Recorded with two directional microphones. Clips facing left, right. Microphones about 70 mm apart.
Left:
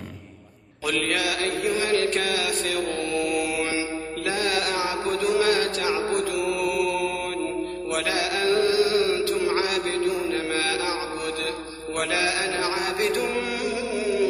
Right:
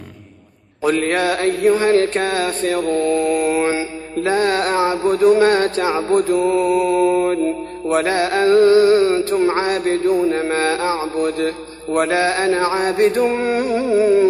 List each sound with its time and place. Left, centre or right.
0.8 s mantra: right